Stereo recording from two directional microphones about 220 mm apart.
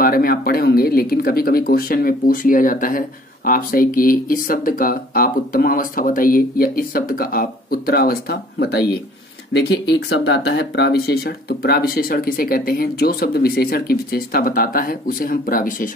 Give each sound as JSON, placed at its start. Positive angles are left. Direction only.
{"t": 0.0, "sound": "speech", "side_deg": 40}